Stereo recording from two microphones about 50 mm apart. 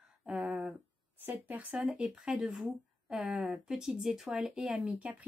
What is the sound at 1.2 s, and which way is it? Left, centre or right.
Speech, right.